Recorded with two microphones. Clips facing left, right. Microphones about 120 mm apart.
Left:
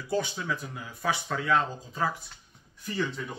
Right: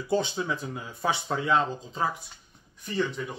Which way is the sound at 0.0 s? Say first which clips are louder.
Right 3 dB; 25° right (ahead or behind).